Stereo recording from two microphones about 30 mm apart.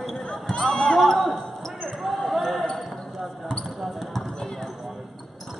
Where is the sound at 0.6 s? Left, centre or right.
Centre.